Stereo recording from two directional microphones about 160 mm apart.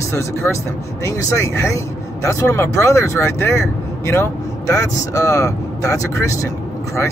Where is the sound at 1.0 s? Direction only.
20° left (ahead or behind).